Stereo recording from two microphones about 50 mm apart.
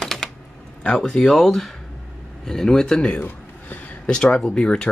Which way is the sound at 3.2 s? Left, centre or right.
Left.